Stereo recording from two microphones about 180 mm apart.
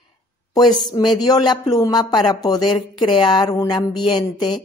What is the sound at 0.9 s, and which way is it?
Speech, 25° left (ahead or behind).